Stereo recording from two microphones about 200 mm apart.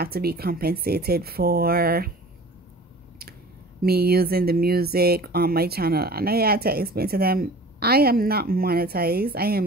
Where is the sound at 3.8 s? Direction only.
50° right (ahead or behind).